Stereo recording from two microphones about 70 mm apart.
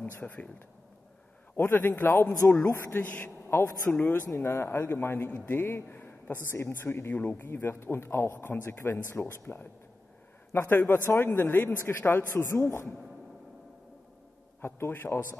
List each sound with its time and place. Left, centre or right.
0.0 s speech: centre
4.3 s speech: left
10.7 s speech: left
14.6 s speech: left